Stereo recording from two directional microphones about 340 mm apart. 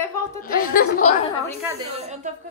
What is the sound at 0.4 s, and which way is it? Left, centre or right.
Chuckle, left.